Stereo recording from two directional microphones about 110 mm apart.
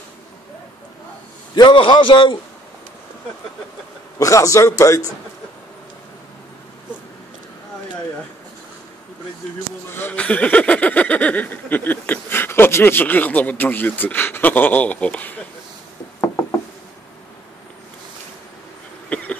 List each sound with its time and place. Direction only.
1.5 s a man's voice: 45° left (ahead or behind)
4.2 s a man's voice: 30° left (ahead or behind)
9.8 s speech: 20° left (ahead or behind)
19.0 s a sound: 10° left (ahead or behind)